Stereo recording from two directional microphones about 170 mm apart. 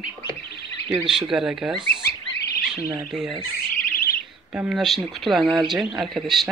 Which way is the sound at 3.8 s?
65° left (ahead or behind).